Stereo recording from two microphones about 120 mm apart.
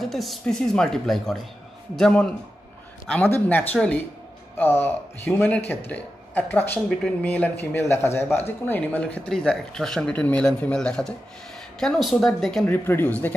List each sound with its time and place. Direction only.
0.0 s speech: centre (ahead or behind)
3.3 s speech: 15° left (ahead or behind)
4.6 s speech: 20° left (ahead or behind); by 12.6 s centre (ahead or behind)
12.6 s speech: 15° left (ahead or behind)